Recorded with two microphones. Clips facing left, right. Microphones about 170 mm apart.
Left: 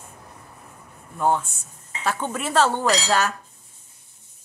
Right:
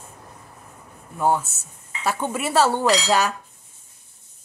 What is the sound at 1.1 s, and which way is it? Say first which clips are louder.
A woman's voice: right 1 dB; 10° right (ahead or behind).